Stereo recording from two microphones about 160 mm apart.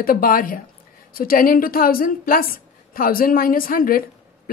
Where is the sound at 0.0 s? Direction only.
65° left (ahead or behind).